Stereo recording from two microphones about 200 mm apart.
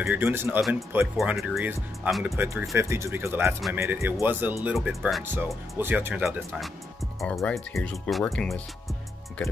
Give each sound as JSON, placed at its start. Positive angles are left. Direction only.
{"t": 0.0, "sound": "speech", "side_deg": -10}
{"t": 7.2, "sound": "speech", "side_deg": 5}